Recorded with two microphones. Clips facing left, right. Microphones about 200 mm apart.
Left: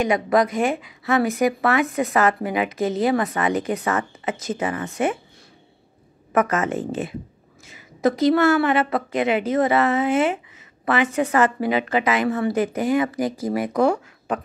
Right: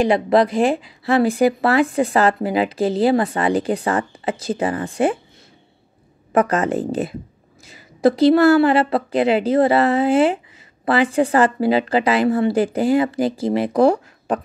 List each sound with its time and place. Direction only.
0.0 s speech: 30° right (ahead or behind)
6.3 s speech: 35° right (ahead or behind)